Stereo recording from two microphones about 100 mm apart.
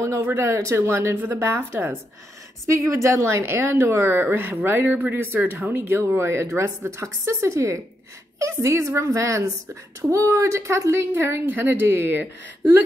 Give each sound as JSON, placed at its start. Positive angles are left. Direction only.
{"t": 0.0, "sound": "a woman's voice", "side_deg": -25}